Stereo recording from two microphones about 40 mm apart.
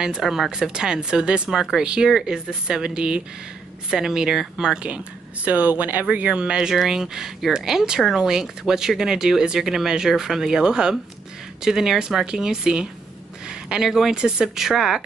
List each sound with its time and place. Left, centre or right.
0.2 s speech: centre
0.6 s speech: centre
4.8 s speech: right
6.1 s speech: right; by 15.0 s centre